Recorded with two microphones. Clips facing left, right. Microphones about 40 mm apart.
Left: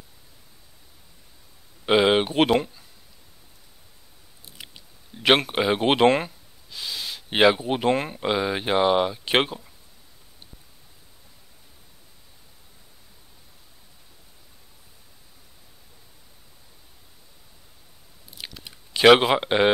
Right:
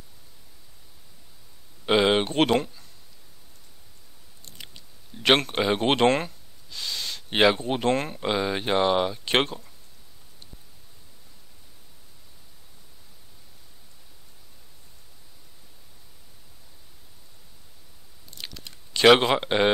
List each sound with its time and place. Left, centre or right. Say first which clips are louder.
1.9 s speech: left 2 dB; centre
4.5 s speech: left 1 dB; centre
18.3 s chewing: left 1 dB; centre